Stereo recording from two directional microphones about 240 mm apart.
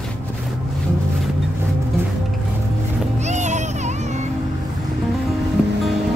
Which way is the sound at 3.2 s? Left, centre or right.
Right.